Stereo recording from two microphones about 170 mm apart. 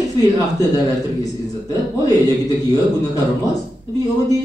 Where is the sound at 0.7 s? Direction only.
20° left (ahead or behind).